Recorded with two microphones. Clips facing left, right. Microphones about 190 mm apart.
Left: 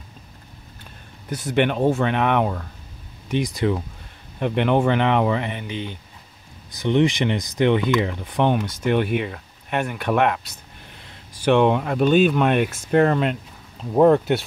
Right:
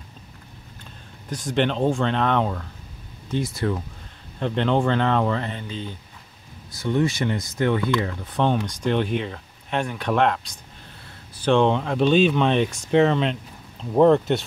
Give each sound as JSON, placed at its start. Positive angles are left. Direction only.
{"t": 1.3, "sound": "speech", "side_deg": 5}